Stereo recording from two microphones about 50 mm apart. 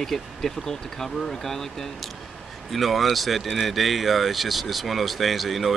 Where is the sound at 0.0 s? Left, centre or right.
Centre.